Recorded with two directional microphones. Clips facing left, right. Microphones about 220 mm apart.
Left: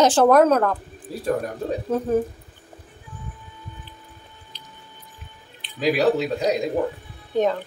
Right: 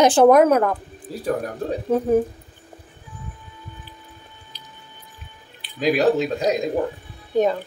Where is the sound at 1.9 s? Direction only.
15° right (ahead or behind).